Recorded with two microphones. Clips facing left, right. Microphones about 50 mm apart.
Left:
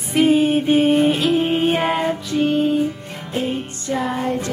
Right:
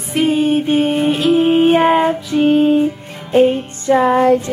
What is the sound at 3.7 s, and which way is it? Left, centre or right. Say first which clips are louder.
Music: right 10 dB; right.